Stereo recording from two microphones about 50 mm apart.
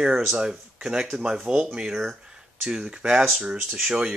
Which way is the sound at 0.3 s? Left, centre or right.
Centre.